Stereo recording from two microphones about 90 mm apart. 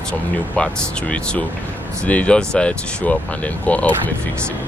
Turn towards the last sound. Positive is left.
turn(degrees=15)  # may be behind; listen again after turning